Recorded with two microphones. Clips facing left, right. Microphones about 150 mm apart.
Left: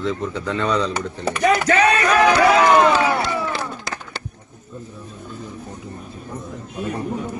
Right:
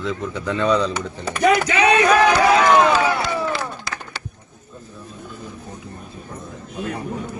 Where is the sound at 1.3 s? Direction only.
45° left (ahead or behind).